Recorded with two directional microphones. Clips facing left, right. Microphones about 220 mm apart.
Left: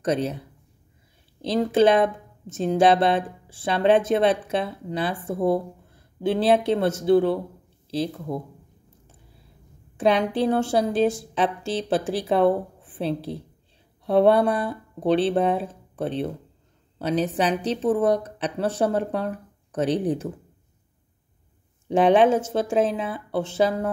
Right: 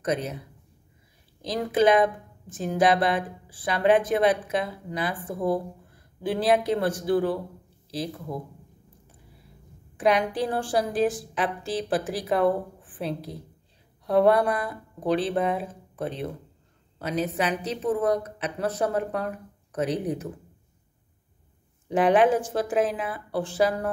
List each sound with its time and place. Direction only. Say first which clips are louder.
0.0 s a woman's voice: left 4 dB; 30° left (ahead or behind)
1.4 s speech: left 3 dB; 25° left (ahead or behind)
9.9 s a woman's voice: left 2 dB; 25° left (ahead or behind)
21.8 s speech: left 3 dB; 25° left (ahead or behind)